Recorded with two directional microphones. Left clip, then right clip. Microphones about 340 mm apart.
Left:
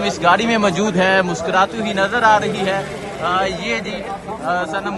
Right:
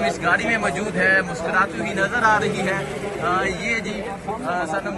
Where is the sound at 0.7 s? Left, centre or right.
Centre.